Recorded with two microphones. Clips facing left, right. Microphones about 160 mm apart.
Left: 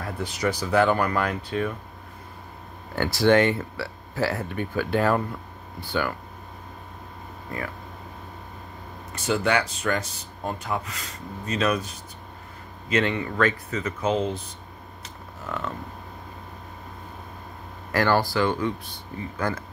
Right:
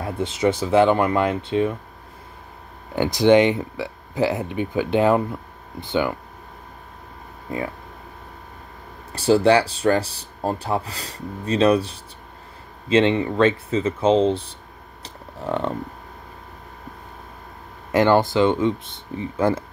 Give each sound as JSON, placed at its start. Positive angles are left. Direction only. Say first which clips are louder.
{"t": 0.0, "sound": "speech", "louder": "right 6 dB", "side_deg": -25}
{"t": 3.0, "sound": "speech", "louder": "right 4 dB", "side_deg": -15}
{"t": 7.5, "sound": "speech", "louder": "right 6 dB", "side_deg": -20}
{"t": 9.1, "sound": "speech", "louder": "right 8 dB", "side_deg": -30}
{"t": 17.9, "sound": "speech", "louder": "right 5 dB", "side_deg": -20}